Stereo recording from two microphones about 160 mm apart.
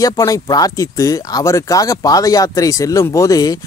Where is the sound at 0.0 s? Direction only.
20° left (ahead or behind).